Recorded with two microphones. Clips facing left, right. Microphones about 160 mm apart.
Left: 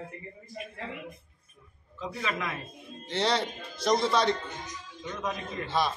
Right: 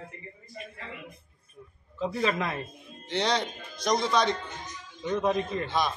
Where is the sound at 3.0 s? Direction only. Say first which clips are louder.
Even; 5° left (ahead or behind).